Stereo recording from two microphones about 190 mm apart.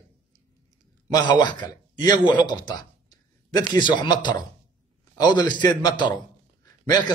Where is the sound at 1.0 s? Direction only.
20° left (ahead or behind).